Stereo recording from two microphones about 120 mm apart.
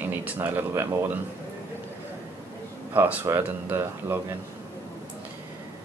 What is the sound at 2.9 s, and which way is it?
Speech, 20° right (ahead or behind).